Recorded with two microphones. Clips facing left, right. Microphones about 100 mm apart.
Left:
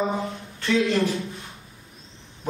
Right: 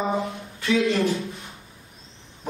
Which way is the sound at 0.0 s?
Centre (ahead or behind).